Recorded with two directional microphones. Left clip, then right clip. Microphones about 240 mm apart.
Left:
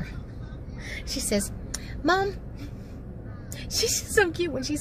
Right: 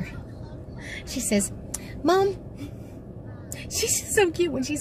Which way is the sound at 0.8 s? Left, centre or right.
Centre.